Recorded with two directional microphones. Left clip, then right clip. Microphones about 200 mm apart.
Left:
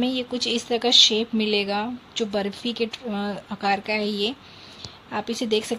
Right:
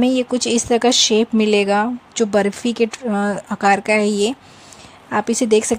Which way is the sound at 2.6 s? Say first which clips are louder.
Right 8 dB; 60° right (ahead or behind).